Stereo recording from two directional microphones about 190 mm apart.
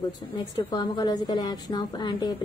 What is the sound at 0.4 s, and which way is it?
A woman's voice, 25° left (ahead or behind).